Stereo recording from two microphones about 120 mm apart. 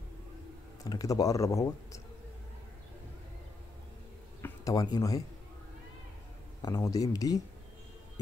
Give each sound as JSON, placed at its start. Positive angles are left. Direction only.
{"t": 0.8, "sound": "speech", "side_deg": 30}
{"t": 4.4, "sound": "speech", "side_deg": 30}
{"t": 6.6, "sound": "speech", "side_deg": 30}